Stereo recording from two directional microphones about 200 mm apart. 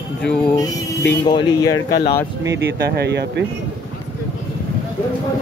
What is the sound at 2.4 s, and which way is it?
Speech, 60° right (ahead or behind).